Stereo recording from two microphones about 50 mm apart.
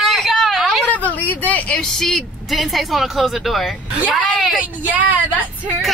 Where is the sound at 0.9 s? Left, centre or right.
Left.